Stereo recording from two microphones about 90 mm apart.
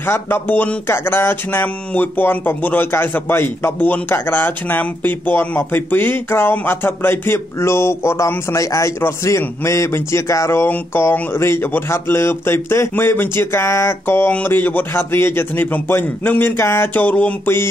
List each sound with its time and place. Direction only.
0.0 s music: 25° left (ahead or behind)